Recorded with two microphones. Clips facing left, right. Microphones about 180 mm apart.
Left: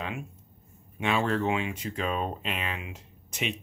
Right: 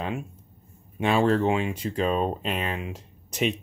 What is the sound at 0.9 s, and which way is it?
Speech, 35° right (ahead or behind).